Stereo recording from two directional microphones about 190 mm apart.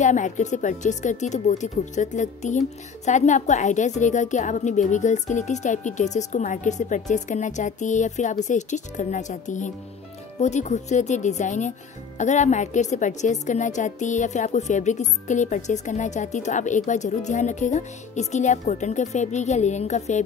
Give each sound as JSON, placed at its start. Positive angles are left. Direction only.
{"t": 0.0, "sound": "a woman's voice", "side_deg": 40}